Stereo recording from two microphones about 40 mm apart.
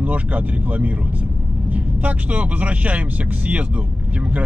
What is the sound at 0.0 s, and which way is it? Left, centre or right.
A man's voice, right.